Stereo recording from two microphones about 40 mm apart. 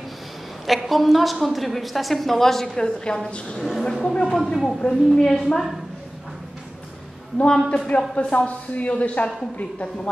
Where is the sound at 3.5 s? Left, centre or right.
Centre.